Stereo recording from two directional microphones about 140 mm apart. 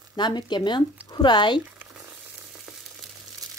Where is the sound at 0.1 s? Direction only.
30° left (ahead or behind).